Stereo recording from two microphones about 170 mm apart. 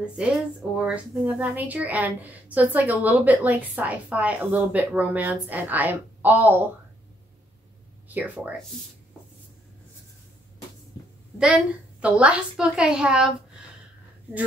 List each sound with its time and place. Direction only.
0.0 s a woman's voice: 5° right (ahead or behind)
8.1 s a woman's voice: 10° right (ahead or behind)
11.3 s a woman's voice: 5° right (ahead or behind)